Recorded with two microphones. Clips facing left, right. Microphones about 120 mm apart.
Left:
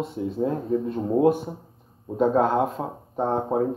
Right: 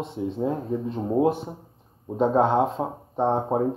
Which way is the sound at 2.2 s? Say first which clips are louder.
Even; 25° right (ahead or behind).